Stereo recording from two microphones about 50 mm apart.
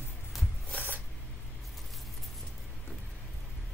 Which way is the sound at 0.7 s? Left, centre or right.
Left.